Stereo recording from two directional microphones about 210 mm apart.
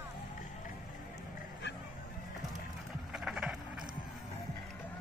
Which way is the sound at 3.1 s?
5° right (ahead or behind).